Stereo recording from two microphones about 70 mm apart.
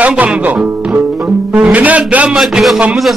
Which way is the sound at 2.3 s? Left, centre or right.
Centre.